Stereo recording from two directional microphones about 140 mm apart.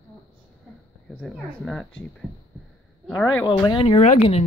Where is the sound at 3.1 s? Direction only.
10° left (ahead or behind).